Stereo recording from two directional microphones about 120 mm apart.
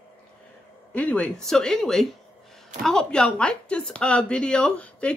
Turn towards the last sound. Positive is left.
turn(degrees=10)  # may be behind; listen again after turning